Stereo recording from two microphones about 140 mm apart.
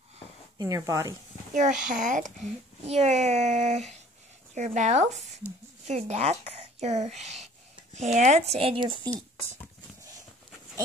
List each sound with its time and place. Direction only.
0.6 s speech: 25° right (ahead or behind)
1.5 s speech: 65° right (ahead or behind)
2.9 s speech: 50° right (ahead or behind); by 9.1 s 35° right (ahead or behind)